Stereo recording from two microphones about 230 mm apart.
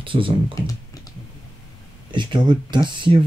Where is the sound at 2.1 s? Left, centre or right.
Centre.